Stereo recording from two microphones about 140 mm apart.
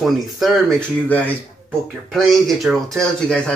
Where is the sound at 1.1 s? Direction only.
10° left (ahead or behind).